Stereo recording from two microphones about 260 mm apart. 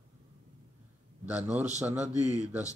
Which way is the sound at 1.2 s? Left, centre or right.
Centre.